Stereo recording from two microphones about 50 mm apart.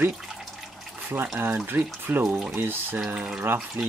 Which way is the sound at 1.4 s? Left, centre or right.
Right.